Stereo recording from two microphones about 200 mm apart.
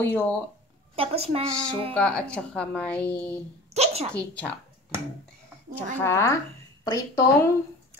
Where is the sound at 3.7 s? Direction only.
30° right (ahead or behind).